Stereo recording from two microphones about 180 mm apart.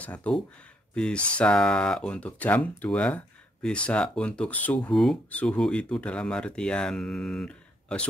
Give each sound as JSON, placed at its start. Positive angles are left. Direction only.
{"t": 0.0, "sound": "speech", "side_deg": 10}